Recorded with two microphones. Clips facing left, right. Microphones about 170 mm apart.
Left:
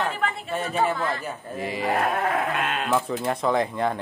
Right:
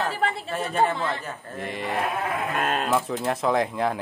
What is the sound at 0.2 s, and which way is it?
Speech, 30° right (ahead or behind).